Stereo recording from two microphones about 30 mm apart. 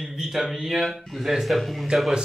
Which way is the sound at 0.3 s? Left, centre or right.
Centre.